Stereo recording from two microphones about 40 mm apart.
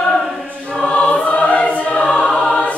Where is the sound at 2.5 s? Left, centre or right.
Left.